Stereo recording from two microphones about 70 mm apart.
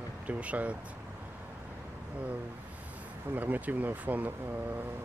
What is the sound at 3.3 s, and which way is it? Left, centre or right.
Speech, right.